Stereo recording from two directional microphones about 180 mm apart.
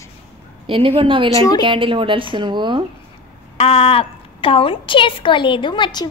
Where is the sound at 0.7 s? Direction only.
30° right (ahead or behind).